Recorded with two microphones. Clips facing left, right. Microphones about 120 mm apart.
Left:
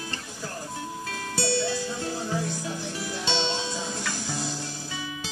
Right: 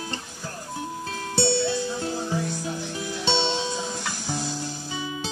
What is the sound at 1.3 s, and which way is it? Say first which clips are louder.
Music: right 4 dB; 25° right (ahead or behind).